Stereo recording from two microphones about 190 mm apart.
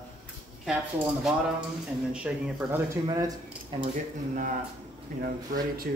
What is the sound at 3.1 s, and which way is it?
Speech, 20° right (ahead or behind).